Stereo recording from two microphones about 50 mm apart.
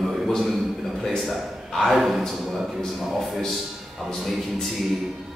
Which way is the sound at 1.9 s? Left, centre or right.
Centre.